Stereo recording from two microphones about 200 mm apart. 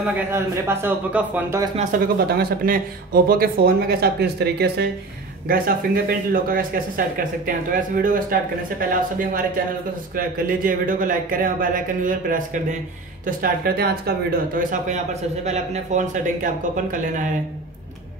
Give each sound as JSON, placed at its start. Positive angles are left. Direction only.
{"t": 0.3, "sound": "a man's voice", "side_deg": -10}
{"t": 1.8, "sound": "a man's voice", "side_deg": -45}